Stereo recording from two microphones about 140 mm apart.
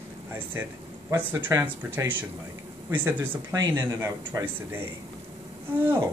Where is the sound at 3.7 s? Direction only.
15° right (ahead or behind).